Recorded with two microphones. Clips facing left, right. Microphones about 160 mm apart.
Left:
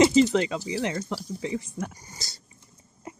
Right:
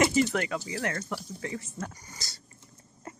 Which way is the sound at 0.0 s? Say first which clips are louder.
Left 6 dB; 20° left (ahead or behind).